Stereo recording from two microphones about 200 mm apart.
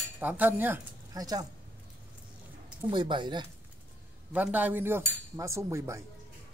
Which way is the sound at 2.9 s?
25° right (ahead or behind).